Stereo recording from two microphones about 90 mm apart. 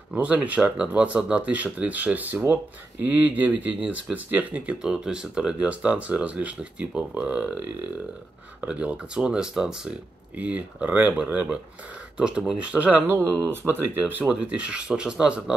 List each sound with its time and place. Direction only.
0.1 s speech: 15° right (ahead or behind)
14.2 s speech: 10° right (ahead or behind)